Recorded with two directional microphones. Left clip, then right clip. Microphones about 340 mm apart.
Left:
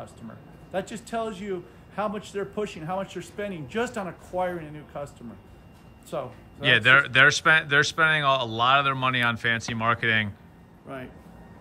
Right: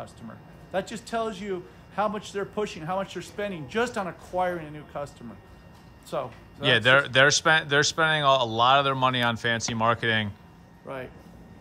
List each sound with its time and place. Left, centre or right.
0.0 s speech: centre
10.9 s speech: right